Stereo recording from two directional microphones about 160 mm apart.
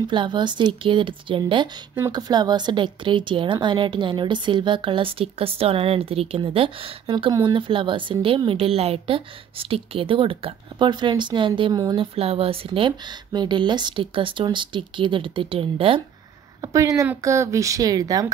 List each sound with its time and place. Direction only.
0.0 s a woman's voice: 30° right (ahead or behind)
2.0 s a woman's voice: 20° right (ahead or behind)
16.6 s speech: 20° right (ahead or behind)